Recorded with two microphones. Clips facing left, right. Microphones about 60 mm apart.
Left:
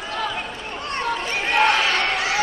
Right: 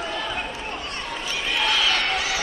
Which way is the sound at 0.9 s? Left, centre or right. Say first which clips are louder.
Left 6 dB; left.